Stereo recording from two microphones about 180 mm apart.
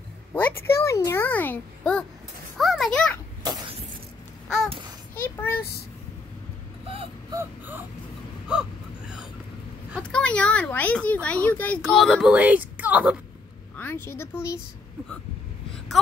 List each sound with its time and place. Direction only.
0.3 s speech: 15° left (ahead or behind)
2.5 s a sound: centre (ahead or behind)
5.1 s a sound: 10° left (ahead or behind)
6.9 s wail: 30° right (ahead or behind)
7.3 s wail: 10° right (ahead or behind)
8.5 s gasp: 5° right (ahead or behind)
10.0 s speech: 5° left (ahead or behind)
13.7 s speech: 15° left (ahead or behind)